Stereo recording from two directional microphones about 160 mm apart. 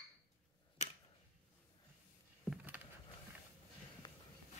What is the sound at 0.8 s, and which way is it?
Tick-tock, 45° left (ahead or behind).